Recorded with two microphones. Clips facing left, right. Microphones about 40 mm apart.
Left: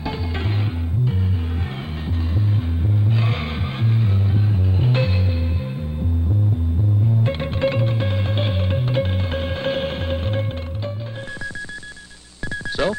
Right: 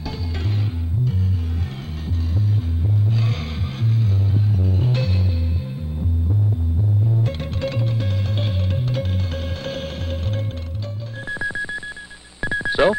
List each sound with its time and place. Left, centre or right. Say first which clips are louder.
3.1 s vehicle: left 3 dB; left
3.8 s music: even; left
7.2 s music: left 5 dB; left
12.4 s music: right 5 dB; right